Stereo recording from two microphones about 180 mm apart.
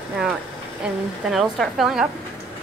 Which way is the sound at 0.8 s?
Centre (ahead or behind).